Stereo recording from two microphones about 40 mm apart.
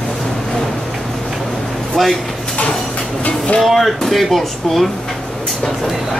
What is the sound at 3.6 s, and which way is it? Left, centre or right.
Speech, centre.